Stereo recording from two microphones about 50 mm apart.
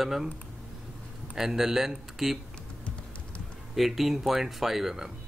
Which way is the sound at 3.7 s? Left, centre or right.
Centre.